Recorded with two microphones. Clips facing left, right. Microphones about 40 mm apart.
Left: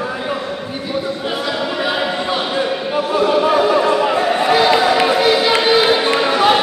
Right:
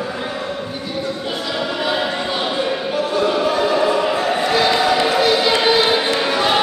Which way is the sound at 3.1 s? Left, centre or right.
Centre.